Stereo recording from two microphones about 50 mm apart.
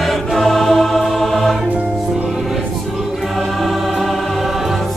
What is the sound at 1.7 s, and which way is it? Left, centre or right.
Music, right.